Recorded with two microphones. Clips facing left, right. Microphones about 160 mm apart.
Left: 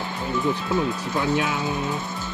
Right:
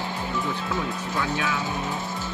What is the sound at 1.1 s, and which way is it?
Speech, 25° left (ahead or behind).